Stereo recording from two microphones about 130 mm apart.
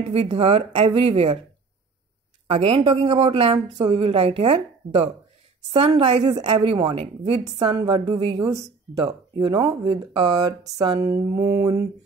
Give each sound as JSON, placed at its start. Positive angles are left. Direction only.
{"t": 0.1, "sound": "a woman's voice", "side_deg": -50}
{"t": 2.5, "sound": "a woman's voice", "side_deg": -50}
{"t": 3.5, "sound": "speech", "side_deg": -30}
{"t": 3.9, "sound": "a woman's voice", "side_deg": -50}
{"t": 11.0, "sound": "mantra", "side_deg": -25}